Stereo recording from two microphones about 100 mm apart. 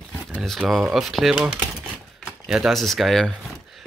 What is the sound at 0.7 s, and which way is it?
Speech, centre (ahead or behind).